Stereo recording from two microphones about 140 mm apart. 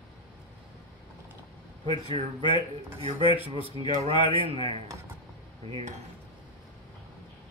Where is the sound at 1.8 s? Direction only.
40° right (ahead or behind).